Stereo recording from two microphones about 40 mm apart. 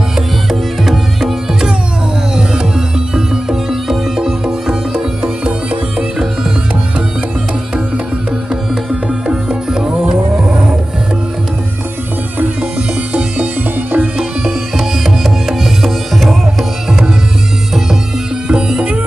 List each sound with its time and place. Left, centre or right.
0.5 s music: centre
3.2 s music: centre
9.3 s music: centre
12.7 s music: right
14.8 s music: centre
18.5 s music: right